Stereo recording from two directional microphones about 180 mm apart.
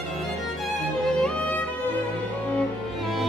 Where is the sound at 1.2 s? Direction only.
10° left (ahead or behind).